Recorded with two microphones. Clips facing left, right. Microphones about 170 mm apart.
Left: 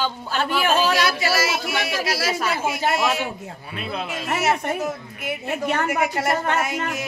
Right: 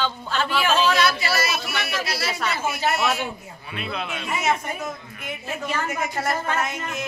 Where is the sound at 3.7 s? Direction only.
40° left (ahead or behind).